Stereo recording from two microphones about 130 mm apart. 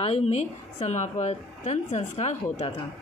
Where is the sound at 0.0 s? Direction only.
50° left (ahead or behind).